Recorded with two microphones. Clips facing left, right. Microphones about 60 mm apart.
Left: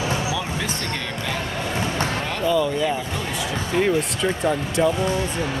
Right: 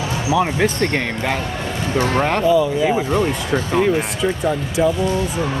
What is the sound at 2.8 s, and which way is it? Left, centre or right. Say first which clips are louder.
Speech: right 7 dB; right.